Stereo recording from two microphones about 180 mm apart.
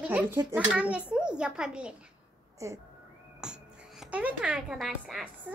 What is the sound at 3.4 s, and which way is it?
Speech, 5° right (ahead or behind).